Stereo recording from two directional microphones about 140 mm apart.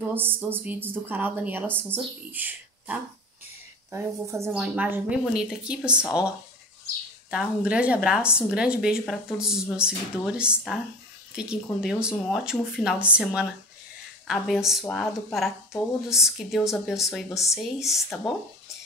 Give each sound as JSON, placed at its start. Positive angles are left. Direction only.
{"t": 0.0, "sound": "speech", "side_deg": -15}
{"t": 7.2, "sound": "speech", "side_deg": -10}